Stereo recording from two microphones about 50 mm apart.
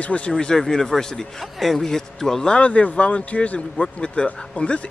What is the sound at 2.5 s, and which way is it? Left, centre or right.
A man's voice, left.